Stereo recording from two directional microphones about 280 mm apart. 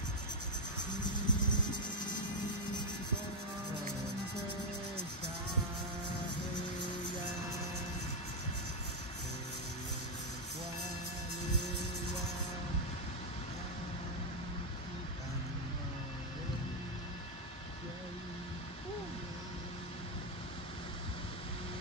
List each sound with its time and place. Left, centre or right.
1.2 s vehicle: centre